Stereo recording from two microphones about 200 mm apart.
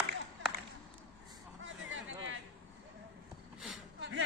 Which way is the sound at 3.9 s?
60° right (ahead or behind).